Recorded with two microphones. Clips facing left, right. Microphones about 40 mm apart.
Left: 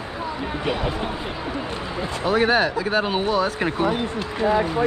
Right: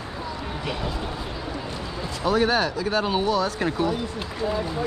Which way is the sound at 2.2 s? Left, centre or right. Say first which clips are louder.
Left 2 dB; left.